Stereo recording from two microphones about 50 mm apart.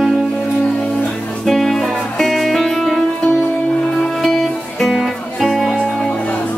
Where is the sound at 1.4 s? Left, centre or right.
Centre.